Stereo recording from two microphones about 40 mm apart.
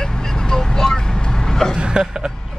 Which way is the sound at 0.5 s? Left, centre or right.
Centre.